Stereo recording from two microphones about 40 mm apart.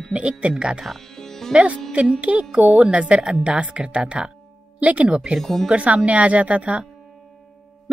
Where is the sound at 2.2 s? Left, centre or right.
Right.